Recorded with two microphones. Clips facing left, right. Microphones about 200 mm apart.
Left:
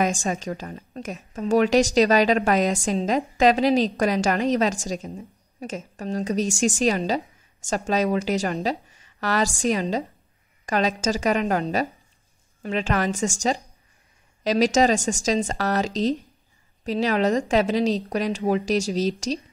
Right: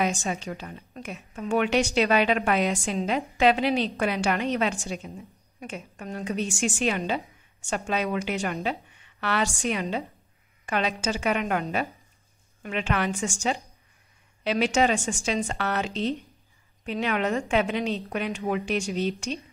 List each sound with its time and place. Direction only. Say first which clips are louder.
0.0 s a woman's voice: left 3 dB; 45° left (ahead or behind)